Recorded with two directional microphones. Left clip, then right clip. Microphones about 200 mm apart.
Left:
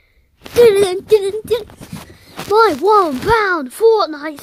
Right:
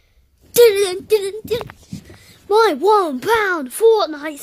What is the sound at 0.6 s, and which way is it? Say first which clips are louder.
Child singing: left 2 dB; 15° left (ahead or behind).